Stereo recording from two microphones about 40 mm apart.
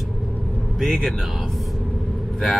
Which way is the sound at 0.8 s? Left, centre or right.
Centre.